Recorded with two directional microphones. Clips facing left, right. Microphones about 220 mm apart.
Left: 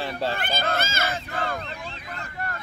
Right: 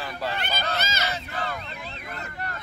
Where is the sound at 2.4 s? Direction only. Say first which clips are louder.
Left 3 dB; 50° left (ahead or behind).